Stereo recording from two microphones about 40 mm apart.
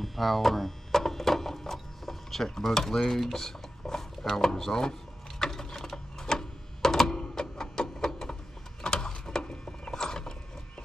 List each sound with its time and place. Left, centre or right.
0.0 s a sound: centre
5.4 s gears: centre
5.8 s sewing machine: centre
7.2 s music: centre
8.8 s mechanisms: centre